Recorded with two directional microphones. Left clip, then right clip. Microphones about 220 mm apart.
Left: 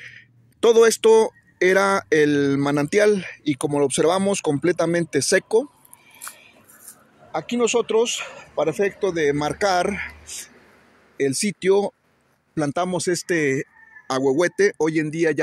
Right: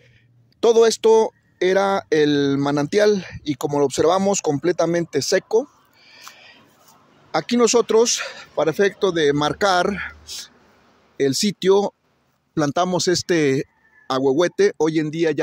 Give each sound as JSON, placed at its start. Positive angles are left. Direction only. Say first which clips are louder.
{"t": 0.0, "sound": "speech", "louder": "left 15 dB", "side_deg": 0}
{"t": 7.2, "sound": "speech", "louder": "right 4 dB", "side_deg": -20}
{"t": 11.1, "sound": "speech", "louder": "right 3 dB", "side_deg": -15}